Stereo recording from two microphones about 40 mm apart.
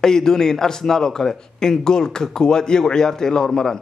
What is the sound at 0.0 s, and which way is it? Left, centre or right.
A man's voice, centre.